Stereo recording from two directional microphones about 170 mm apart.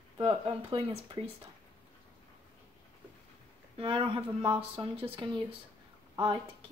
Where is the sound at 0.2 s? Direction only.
30° right (ahead or behind).